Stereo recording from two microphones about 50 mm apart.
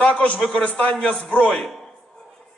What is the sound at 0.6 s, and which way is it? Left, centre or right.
A man's voice, left.